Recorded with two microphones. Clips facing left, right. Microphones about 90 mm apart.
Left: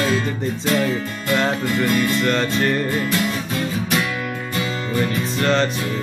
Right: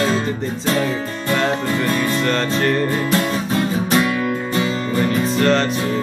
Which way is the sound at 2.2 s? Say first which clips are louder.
Right 1 dB; centre (ahead or behind).